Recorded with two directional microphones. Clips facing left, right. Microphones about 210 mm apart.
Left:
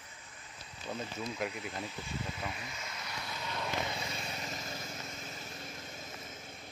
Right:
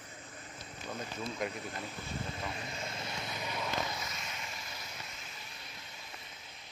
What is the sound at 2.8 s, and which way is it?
Vehicle, 30° right (ahead or behind).